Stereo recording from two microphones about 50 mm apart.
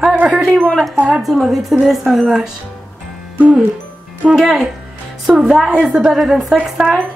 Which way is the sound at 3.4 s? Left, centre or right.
Right.